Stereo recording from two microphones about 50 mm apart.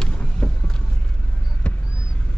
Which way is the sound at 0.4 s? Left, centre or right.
Left.